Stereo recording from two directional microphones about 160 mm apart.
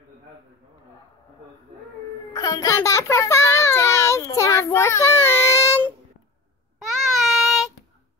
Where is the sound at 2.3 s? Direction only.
20° left (ahead or behind).